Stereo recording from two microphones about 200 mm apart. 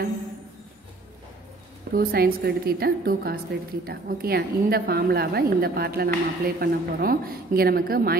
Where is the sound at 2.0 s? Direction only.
50° right (ahead or behind).